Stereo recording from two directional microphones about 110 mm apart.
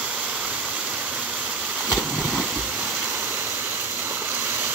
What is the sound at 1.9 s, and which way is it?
Vehicle, 5° right (ahead or behind).